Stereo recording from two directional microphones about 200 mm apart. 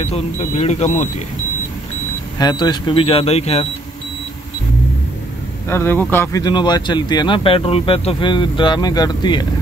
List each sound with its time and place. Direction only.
0.0 s speech: 30° left (ahead or behind)
2.3 s speech: 20° left (ahead or behind)
5.7 s speech: 10° left (ahead or behind)